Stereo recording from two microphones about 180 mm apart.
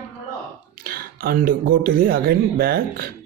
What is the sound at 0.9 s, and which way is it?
Speech, 55° right (ahead or behind).